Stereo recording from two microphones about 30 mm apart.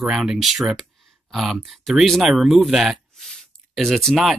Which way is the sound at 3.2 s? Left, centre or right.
Centre.